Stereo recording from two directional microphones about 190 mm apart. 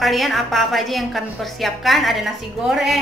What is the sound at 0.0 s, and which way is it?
A woman's voice, centre (ahead or behind).